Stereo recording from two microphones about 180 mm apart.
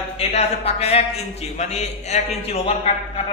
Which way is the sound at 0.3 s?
35° left (ahead or behind).